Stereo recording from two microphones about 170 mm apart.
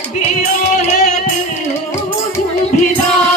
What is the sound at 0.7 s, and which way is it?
Music, 45° left (ahead or behind).